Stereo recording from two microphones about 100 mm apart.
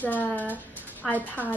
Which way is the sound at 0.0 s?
15° left (ahead or behind).